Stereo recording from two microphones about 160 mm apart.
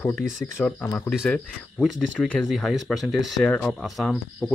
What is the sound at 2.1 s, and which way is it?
Speech, 10° left (ahead or behind).